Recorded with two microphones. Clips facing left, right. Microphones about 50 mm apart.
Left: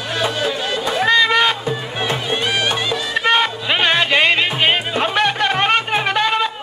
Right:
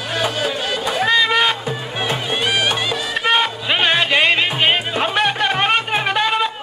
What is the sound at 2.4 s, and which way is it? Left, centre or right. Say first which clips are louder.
Music: right 1 dB; right.